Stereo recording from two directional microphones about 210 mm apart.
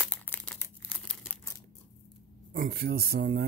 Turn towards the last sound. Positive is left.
turn(degrees=-50)  # may be behind; listen again after turning